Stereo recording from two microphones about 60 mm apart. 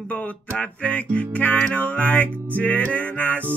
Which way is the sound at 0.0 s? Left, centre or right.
Left.